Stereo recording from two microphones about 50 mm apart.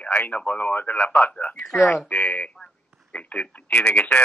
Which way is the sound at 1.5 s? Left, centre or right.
Centre.